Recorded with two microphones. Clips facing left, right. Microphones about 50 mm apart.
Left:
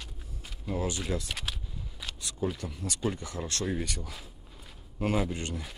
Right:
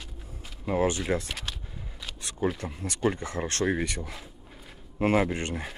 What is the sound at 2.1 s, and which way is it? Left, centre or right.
Camera, right.